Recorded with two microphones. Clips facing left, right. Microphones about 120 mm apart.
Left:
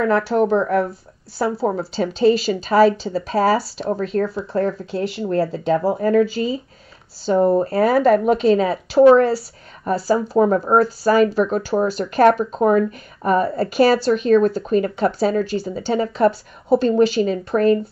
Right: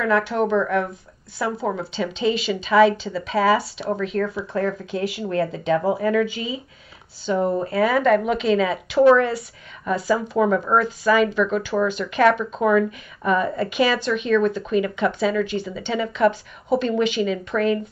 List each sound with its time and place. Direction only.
0.0 s speech: 35° left (ahead or behind)